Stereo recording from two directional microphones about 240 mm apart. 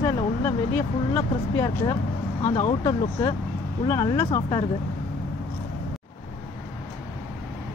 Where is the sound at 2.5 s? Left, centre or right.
Left.